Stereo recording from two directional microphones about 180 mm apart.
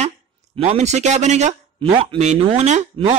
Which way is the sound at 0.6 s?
35° right (ahead or behind).